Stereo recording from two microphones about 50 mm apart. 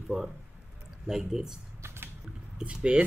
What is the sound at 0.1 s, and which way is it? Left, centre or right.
Speech, centre.